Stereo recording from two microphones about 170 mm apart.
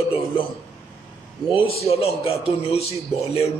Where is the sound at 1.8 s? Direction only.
35° left (ahead or behind).